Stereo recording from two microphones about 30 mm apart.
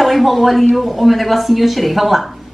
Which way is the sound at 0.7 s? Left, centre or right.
Centre.